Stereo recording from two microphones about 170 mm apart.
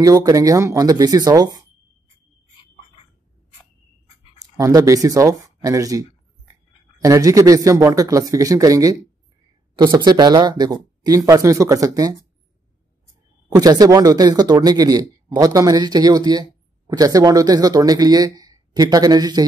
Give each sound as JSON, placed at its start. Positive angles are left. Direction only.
{"t": 0.0, "sound": "speech", "side_deg": -20}
{"t": 4.4, "sound": "speech", "side_deg": -20}
{"t": 13.6, "sound": "speech", "side_deg": -20}